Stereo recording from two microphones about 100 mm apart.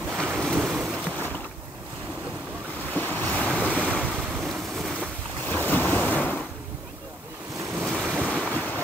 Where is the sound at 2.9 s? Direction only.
15° left (ahead or behind).